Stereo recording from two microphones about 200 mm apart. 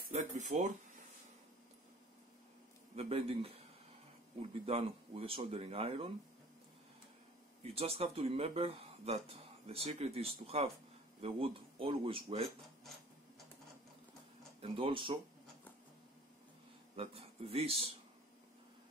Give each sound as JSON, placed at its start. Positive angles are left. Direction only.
{"t": 0.1, "sound": "speech", "side_deg": -35}
{"t": 3.0, "sound": "speech", "side_deg": -30}
{"t": 7.6, "sound": "speech", "side_deg": -30}
{"t": 14.6, "sound": "speech", "side_deg": -25}
{"t": 16.9, "sound": "speech", "side_deg": -30}